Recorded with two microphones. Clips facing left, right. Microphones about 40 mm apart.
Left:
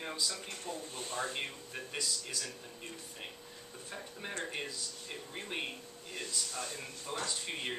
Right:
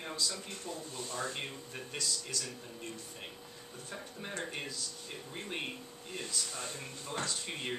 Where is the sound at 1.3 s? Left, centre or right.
Centre.